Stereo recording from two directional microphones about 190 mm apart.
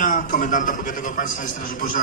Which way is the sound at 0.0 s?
45° left (ahead or behind).